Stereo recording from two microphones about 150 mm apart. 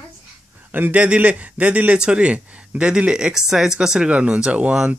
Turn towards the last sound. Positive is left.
turn(degrees=-5)  # may be behind; listen again after turning